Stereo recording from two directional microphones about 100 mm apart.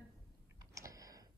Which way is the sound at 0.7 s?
35° right (ahead or behind).